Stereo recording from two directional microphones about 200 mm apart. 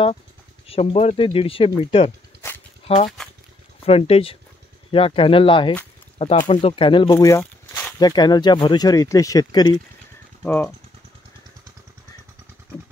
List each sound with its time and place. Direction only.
0.7 s speech: 30° left (ahead or behind)
10.4 s speech: 10° left (ahead or behind)